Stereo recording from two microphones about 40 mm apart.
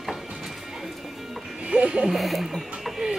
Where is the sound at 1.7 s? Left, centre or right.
Right.